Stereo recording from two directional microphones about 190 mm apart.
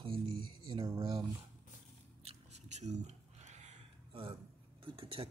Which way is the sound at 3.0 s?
35° right (ahead or behind).